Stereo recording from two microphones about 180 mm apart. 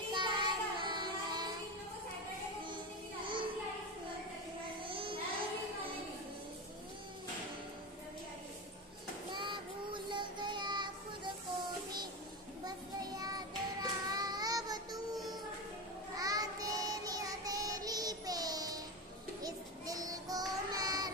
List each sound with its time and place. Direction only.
0.1 s child singing: 25° right (ahead or behind)
4.8 s child singing: 30° right (ahead or behind)
9.3 s child singing: 25° right (ahead or behind)
12.6 s child singing: 20° right (ahead or behind)
16.2 s child singing: 20° right (ahead or behind)